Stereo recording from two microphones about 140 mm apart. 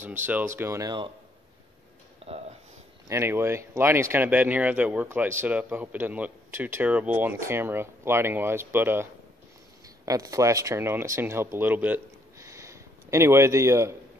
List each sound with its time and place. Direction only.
0.0 s speech: 15° right (ahead or behind)
3.1 s speech: 20° right (ahead or behind)
10.0 s speech: 25° right (ahead or behind)